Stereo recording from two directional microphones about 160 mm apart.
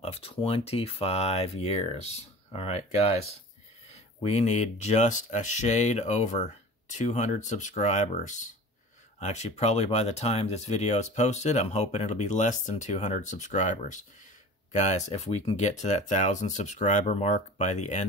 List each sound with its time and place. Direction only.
0.0 s speech: 35° left (ahead or behind)